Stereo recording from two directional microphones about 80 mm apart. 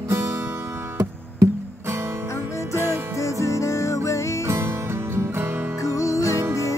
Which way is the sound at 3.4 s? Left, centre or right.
Left.